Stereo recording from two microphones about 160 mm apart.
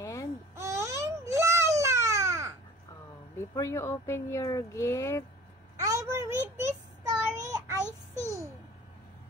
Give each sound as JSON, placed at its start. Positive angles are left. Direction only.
{"t": 0.0, "sound": "baby cry", "side_deg": 20}
{"t": 0.6, "sound": "baby cry", "side_deg": -15}
{"t": 3.3, "sound": "speech", "side_deg": 15}
{"t": 5.8, "sound": "child singing", "side_deg": -20}